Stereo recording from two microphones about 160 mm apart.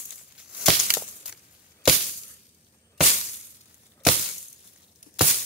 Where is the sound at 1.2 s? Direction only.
5° right (ahead or behind).